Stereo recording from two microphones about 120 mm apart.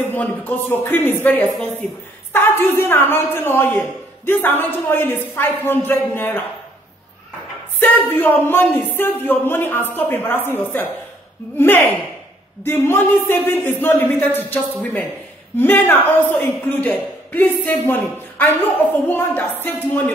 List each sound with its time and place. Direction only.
0.1 s a woman's voice: 15° left (ahead or behind)
2.3 s speech: 20° left (ahead or behind)
7.8 s speech: 15° left (ahead or behind)
19.0 s speech: 15° left (ahead or behind)